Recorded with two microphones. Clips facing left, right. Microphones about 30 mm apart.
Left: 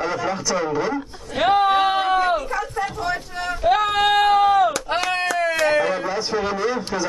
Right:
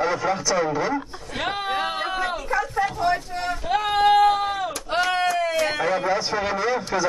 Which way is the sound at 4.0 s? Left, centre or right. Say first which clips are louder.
Right 2 dB; left.